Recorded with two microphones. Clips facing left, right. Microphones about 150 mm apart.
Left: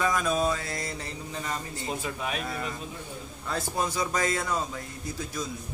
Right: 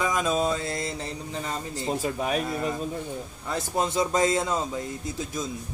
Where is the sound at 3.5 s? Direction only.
25° right (ahead or behind).